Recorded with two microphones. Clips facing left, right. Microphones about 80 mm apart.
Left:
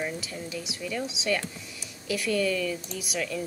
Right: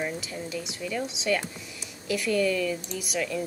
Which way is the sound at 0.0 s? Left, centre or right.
Centre.